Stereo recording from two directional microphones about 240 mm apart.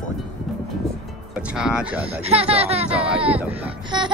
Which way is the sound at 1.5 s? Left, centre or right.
Centre.